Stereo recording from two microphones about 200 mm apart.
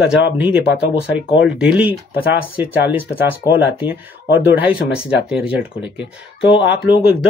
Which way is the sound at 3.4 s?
40° left (ahead or behind).